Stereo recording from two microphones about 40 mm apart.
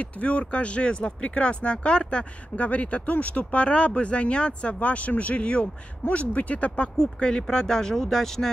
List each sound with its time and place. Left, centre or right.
0.0 s speech: left
2.5 s speech: left
7.0 s speech: left